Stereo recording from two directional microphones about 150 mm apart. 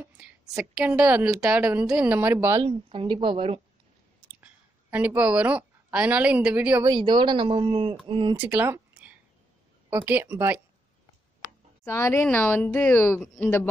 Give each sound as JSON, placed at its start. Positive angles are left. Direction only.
{"t": 0.0, "sound": "a woman's voice", "side_deg": -10}
{"t": 2.6, "sound": "speech", "side_deg": -35}
{"t": 4.9, "sound": "a woman's voice", "side_deg": -10}
{"t": 6.9, "sound": "speech", "side_deg": -30}
{"t": 8.4, "sound": "a sound", "side_deg": -15}
{"t": 9.8, "sound": "a woman's voice", "side_deg": -10}
{"t": 11.8, "sound": "a woman's voice", "side_deg": 20}